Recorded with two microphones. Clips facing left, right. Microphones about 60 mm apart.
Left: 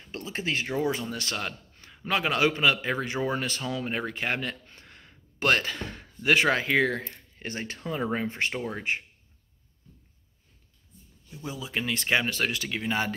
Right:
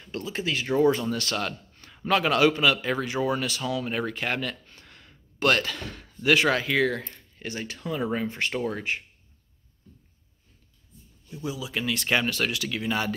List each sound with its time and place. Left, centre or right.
0.0 s speech: left
0.7 s a man's voice: centre
8.5 s speech: centre
11.4 s speech: left
11.7 s a man's voice: left